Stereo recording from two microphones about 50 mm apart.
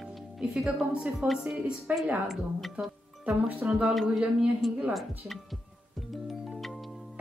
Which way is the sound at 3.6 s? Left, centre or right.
Right.